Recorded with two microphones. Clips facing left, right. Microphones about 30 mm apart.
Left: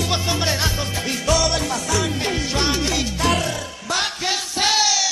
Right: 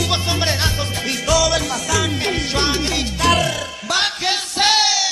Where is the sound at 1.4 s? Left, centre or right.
Right.